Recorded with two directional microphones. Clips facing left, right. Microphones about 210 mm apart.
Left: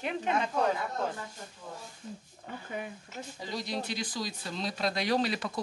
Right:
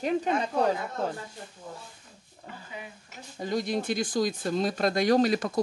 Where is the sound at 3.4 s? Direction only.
50° right (ahead or behind).